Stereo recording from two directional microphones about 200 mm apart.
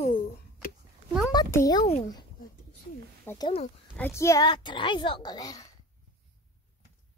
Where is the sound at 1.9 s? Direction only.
30° left (ahead or behind).